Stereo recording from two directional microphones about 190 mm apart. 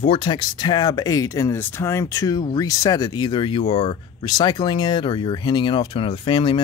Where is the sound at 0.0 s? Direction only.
25° left (ahead or behind).